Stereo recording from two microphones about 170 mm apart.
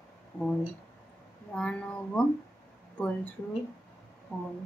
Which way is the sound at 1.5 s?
5° left (ahead or behind).